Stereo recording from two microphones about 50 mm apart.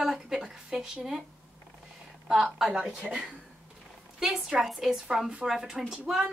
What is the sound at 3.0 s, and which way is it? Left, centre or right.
Speech, centre.